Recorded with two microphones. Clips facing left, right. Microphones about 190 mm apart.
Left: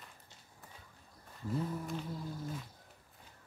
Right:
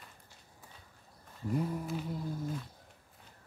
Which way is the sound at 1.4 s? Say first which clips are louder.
Right 3 dB; 15° right (ahead or behind).